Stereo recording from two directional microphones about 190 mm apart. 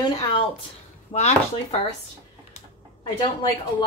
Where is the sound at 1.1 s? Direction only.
35° left (ahead or behind).